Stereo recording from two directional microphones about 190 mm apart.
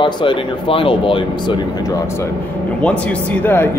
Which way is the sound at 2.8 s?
5° left (ahead or behind).